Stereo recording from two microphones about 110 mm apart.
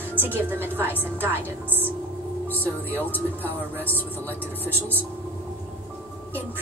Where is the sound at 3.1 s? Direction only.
15° left (ahead or behind).